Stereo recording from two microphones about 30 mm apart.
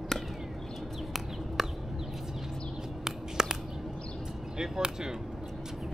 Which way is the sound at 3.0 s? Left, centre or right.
Centre.